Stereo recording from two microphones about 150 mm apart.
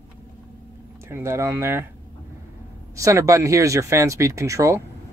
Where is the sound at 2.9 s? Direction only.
20° right (ahead or behind).